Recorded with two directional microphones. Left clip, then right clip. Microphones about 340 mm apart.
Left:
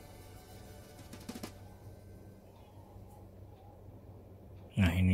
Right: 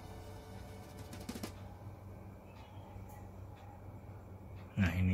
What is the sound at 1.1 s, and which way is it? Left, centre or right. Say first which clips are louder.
Music: even; centre.